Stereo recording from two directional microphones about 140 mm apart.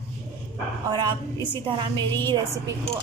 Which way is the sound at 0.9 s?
35° right (ahead or behind).